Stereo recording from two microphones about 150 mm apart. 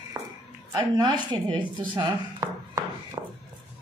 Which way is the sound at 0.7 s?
25° right (ahead or behind).